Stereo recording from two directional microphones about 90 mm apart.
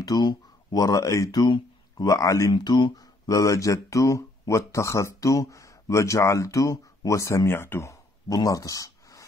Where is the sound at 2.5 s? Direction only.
55° left (ahead or behind).